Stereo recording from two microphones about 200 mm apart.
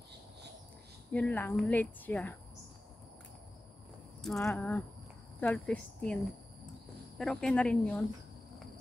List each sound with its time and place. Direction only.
1.1 s speech: 5° left (ahead or behind)
4.2 s speech: centre (ahead or behind)
7.2 s speech: 5° left (ahead or behind)